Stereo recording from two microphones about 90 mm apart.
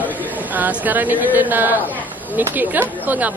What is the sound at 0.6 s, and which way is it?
Speech, 20° right (ahead or behind).